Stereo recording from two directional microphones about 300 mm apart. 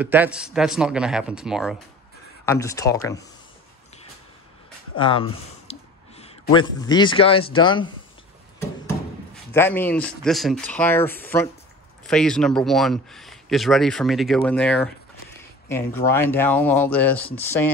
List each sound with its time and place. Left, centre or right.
0.0 s speech: centre
2.4 s speech: centre
4.9 s speech: centre
9.5 s speech: centre